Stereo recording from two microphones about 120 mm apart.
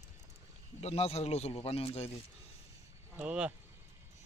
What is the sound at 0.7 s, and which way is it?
Speech, 60° left (ahead or behind).